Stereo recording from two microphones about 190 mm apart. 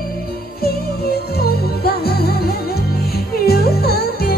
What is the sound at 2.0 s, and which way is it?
Music, 55° left (ahead or behind).